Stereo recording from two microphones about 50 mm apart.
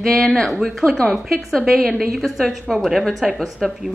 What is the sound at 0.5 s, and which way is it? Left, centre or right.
A woman's voice, centre.